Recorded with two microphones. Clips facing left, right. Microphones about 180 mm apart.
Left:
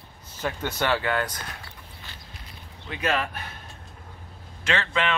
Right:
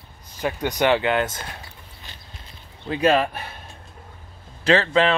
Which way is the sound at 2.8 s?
30° right (ahead or behind).